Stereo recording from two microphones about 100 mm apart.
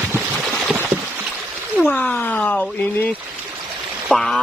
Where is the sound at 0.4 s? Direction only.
Centre (ahead or behind).